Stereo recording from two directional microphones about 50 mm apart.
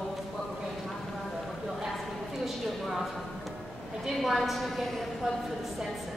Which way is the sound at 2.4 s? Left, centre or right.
Centre.